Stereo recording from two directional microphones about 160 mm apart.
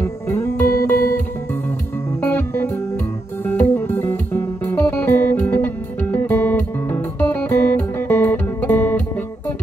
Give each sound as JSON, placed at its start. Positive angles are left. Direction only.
{"t": 0.0, "sound": "music", "side_deg": 15}
{"t": 2.2, "sound": "music", "side_deg": 15}